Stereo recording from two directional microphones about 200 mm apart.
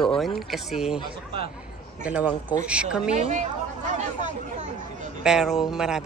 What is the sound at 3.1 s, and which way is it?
Speech, 35° right (ahead or behind).